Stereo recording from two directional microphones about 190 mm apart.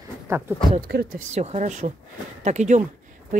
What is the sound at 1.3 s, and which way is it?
Speech, 35° right (ahead or behind).